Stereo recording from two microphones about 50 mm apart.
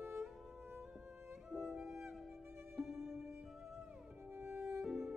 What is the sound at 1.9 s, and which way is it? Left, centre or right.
Music, right.